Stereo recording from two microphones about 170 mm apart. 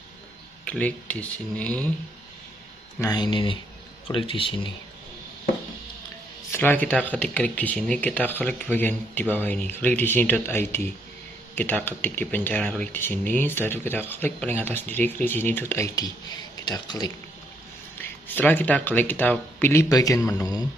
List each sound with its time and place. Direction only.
0.7 s speech: 10° left (ahead or behind)
3.0 s speech: 25° left (ahead or behind)
6.5 s speech: 10° left (ahead or behind)
18.0 s speech: 10° left (ahead or behind)